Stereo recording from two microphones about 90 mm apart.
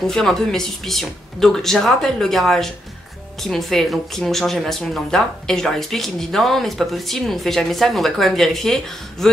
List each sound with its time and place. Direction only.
0.0 s speech: 5° left (ahead or behind)